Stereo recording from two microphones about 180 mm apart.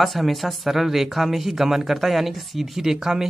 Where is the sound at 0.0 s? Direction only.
Centre (ahead or behind).